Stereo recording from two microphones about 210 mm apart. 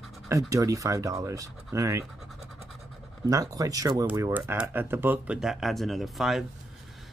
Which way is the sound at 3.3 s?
15° right (ahead or behind).